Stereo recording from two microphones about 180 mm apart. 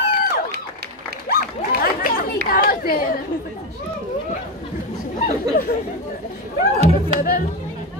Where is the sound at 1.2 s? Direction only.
55° left (ahead or behind).